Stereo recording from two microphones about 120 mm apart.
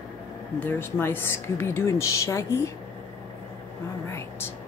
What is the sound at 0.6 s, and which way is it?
A woman's voice, 20° left (ahead or behind).